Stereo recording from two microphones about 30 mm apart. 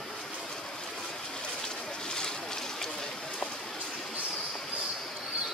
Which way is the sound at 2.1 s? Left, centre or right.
Left.